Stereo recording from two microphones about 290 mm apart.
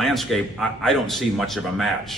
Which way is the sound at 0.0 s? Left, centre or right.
Centre.